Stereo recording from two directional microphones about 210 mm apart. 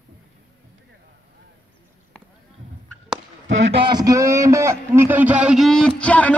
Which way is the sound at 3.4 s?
25° right (ahead or behind).